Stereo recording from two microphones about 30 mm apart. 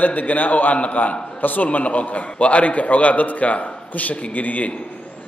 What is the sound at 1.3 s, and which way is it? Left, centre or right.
Speech, left.